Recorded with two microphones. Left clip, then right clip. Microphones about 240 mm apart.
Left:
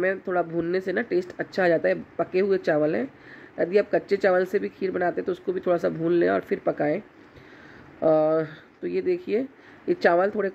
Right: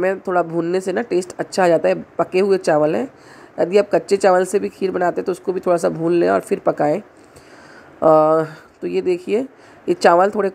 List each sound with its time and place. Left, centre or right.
0.0 s speech: centre
8.0 s speech: centre